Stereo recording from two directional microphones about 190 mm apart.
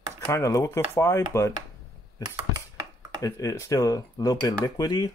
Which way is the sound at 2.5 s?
20° right (ahead or behind).